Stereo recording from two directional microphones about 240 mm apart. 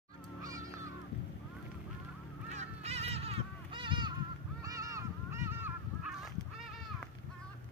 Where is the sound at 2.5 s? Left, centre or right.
Right; by 6.3 s centre.